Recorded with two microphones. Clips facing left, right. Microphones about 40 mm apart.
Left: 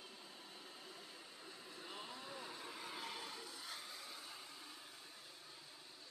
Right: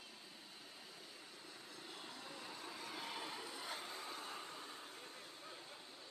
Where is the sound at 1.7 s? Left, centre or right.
Left.